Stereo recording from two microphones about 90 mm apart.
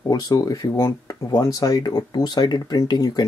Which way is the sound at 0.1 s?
45° left (ahead or behind).